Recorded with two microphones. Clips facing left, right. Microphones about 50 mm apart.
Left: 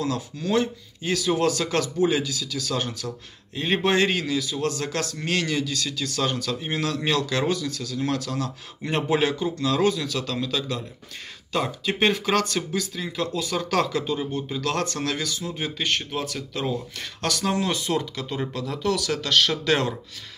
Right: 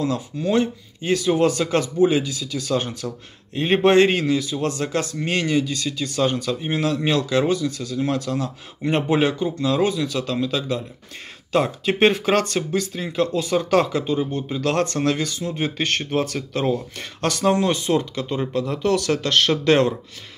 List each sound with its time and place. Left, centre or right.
0.0 s speech: right
15.8 s speech: right
16.7 s speech: right